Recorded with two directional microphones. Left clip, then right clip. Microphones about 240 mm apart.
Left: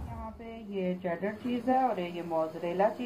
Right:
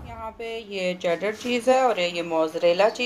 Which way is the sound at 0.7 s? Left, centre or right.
Right.